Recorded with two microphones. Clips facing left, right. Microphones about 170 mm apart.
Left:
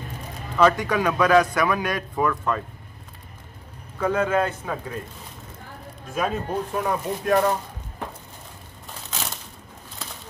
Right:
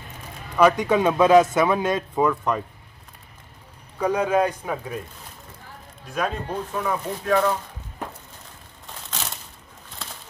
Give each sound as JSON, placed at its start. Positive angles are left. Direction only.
{"t": 0.6, "sound": "a man's voice", "side_deg": -15}
{"t": 4.0, "sound": "a man's voice", "side_deg": -15}
{"t": 6.0, "sound": "speech", "side_deg": 5}
{"t": 8.8, "sound": "crushing", "side_deg": 0}